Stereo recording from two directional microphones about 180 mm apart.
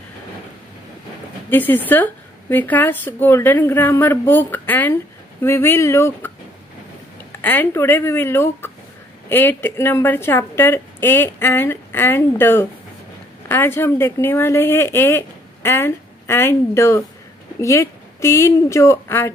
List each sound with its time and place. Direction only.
1.5 s speech: 10° left (ahead or behind)
7.4 s speech: 10° left (ahead or behind)